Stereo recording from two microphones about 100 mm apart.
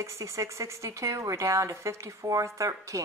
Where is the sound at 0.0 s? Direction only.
30° right (ahead or behind).